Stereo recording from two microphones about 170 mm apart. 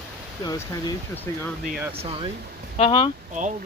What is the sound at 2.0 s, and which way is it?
Speech, 35° right (ahead or behind).